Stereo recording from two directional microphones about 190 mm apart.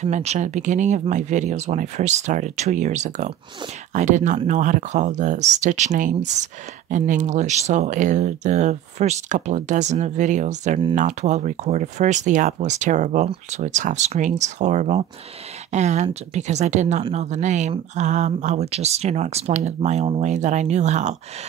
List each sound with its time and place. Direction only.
0.0 s speech: 35° right (ahead or behind)